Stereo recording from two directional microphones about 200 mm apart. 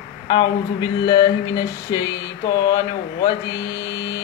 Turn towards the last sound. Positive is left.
turn(degrees=20)  # may be behind; listen again after turning